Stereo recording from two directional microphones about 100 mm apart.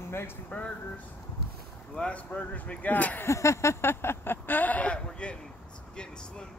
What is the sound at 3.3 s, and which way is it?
Speech, 30° left (ahead or behind).